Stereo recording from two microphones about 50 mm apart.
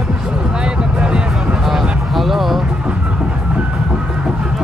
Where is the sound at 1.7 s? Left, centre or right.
Centre.